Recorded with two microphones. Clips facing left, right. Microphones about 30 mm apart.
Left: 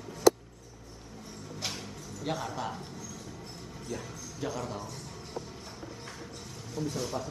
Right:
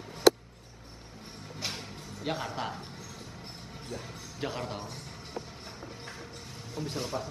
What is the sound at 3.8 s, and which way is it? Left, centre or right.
Music, right.